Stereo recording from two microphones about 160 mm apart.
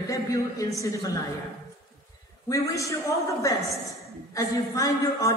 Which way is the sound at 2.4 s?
20° left (ahead or behind).